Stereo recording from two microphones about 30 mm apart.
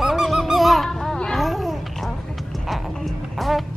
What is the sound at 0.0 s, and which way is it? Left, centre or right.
Honk, centre.